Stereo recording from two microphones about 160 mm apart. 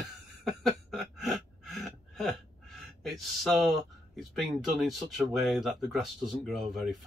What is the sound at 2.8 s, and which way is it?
Speech, centre (ahead or behind).